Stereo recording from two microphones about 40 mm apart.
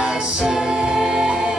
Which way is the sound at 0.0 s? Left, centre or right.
Centre.